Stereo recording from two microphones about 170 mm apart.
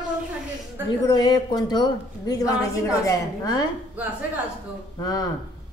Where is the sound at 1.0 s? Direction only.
25° left (ahead or behind).